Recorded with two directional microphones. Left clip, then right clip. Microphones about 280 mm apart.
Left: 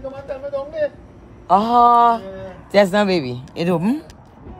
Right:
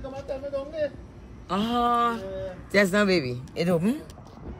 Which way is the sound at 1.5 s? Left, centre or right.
Centre.